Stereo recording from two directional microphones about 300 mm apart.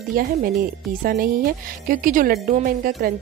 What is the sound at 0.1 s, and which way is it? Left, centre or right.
Speech, right.